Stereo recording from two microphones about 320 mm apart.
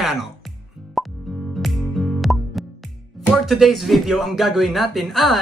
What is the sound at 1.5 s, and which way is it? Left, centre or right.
Music, centre.